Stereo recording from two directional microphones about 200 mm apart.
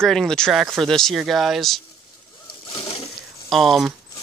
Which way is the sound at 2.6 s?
30° left (ahead or behind).